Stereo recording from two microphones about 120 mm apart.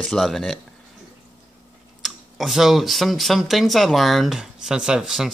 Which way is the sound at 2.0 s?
Centre (ahead or behind).